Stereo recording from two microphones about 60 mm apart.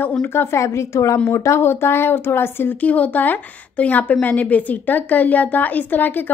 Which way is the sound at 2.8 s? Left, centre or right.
Left.